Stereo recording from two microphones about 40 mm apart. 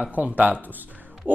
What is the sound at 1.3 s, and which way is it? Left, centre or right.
Speech, right.